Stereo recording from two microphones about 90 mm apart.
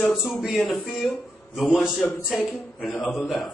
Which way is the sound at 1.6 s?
Centre (ahead or behind).